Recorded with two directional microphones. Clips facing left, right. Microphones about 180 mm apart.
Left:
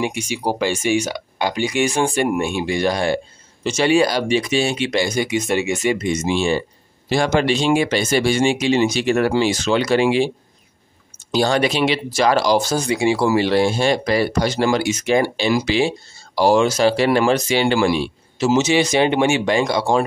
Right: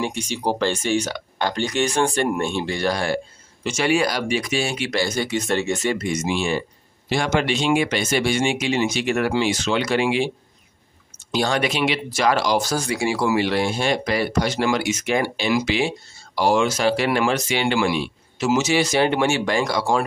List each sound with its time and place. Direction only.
0.0 s speech: 10° left (ahead or behind); by 10.3 s 35° left (ahead or behind)
11.3 s speech: 35° left (ahead or behind)